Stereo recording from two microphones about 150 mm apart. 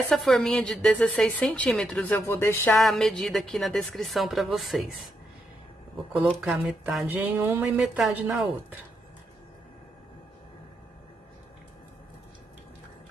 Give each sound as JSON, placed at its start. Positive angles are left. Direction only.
{"t": 0.1, "sound": "a woman's voice", "side_deg": 0}
{"t": 2.8, "sound": "a woman's voice", "side_deg": 0}
{"t": 6.1, "sound": "speech", "side_deg": -10}